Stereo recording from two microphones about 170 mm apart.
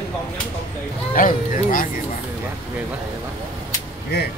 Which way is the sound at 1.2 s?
55° left (ahead or behind).